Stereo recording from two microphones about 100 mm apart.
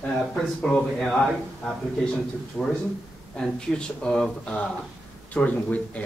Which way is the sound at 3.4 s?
5° left (ahead or behind).